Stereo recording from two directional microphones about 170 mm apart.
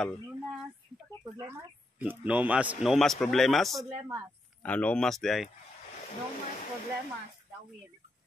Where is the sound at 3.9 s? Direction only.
25° right (ahead or behind).